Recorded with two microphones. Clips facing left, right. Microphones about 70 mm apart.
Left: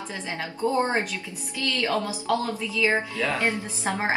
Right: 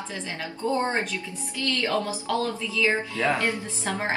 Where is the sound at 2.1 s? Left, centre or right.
Centre.